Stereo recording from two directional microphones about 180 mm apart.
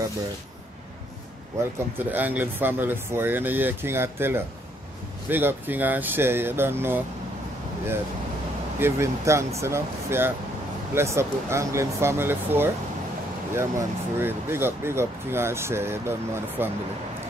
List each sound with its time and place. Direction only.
2.0 s speech: 10° right (ahead or behind)
8.7 s speech: 15° right (ahead or behind)